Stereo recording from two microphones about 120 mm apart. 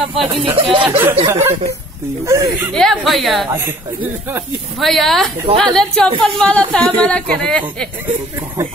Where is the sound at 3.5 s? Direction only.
20° right (ahead or behind).